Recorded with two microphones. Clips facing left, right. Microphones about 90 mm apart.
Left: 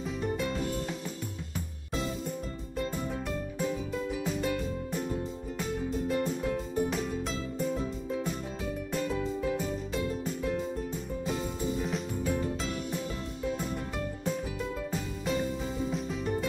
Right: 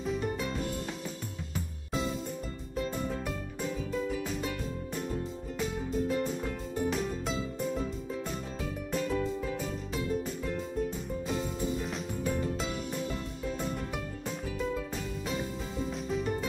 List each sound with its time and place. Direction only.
0.0 s music: centre (ahead or behind)
2.7 s music: centre (ahead or behind)